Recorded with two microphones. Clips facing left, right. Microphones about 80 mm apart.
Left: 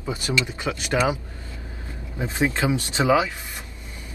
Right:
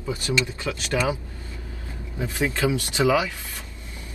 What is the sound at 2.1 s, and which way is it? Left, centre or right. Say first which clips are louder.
Speech: left 2 dB; left.